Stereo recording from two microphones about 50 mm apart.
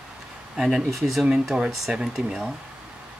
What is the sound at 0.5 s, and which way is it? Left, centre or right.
Speech, centre.